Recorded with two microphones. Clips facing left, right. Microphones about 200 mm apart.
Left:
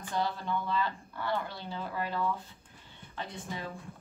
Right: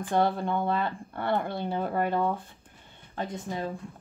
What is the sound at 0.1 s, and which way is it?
A woman's voice, 55° right (ahead or behind).